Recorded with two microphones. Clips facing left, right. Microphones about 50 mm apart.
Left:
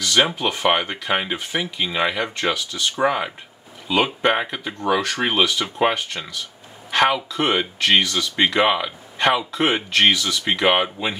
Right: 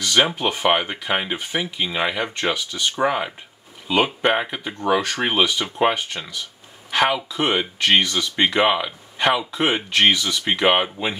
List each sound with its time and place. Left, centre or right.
0.0 s a sound: centre
0.4 s speech: centre
8.0 s speech: centre
8.5 s speech: centre